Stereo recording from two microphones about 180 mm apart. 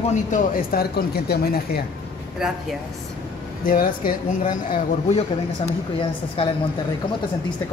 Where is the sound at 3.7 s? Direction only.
50° left (ahead or behind).